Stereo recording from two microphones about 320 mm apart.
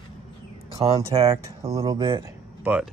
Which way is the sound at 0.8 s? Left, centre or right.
Centre.